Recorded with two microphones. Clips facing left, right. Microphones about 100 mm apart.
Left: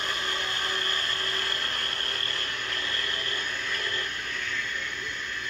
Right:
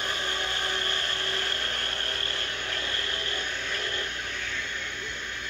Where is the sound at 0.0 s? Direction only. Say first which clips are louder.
Even; 25° right (ahead or behind).